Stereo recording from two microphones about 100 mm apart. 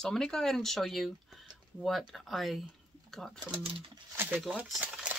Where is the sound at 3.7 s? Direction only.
65° right (ahead or behind).